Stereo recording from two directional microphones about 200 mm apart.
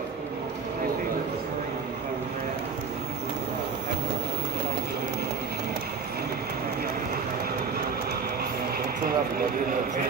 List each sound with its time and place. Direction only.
9.0 s speech: 50° right (ahead or behind)